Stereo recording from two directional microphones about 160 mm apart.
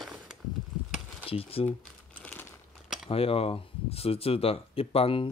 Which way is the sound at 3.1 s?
35° left (ahead or behind).